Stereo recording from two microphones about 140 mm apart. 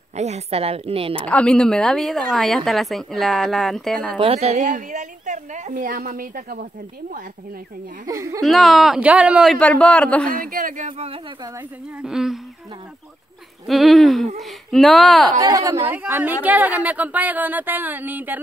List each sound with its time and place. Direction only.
0.1 s a woman's voice: 55° right (ahead or behind)
1.2 s a woman's voice: 10° left (ahead or behind)
4.2 s a woman's voice: 45° right (ahead or behind); by 6.7 s 85° right
8.1 s speech: 25° right (ahead or behind)
8.4 s a woman's voice: centre (ahead or behind)
9.6 s a man's voice: 5° left (ahead or behind)
10.4 s a man's voice: 85° right
12.0 s a woman's voice: 5° right (ahead or behind)
13.7 s a woman's voice: centre (ahead or behind)
15.3 s speech: 25° right (ahead or behind)